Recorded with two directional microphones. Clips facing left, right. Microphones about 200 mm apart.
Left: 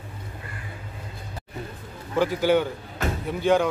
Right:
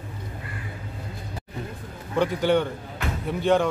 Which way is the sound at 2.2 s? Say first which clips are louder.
Left 1 dB; 5° left (ahead or behind).